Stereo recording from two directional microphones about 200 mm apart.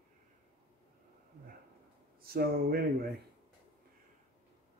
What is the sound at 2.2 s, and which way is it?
Speech, 50° right (ahead or behind).